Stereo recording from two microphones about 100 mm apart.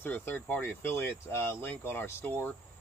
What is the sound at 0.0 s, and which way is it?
Speech, 20° left (ahead or behind).